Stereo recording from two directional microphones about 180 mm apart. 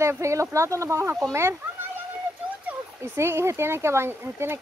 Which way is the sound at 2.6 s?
15° right (ahead or behind).